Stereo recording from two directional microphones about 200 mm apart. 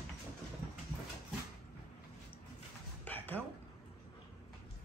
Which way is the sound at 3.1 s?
10° left (ahead or behind).